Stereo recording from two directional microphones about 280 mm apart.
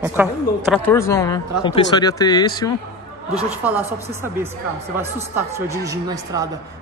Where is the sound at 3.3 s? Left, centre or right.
Centre.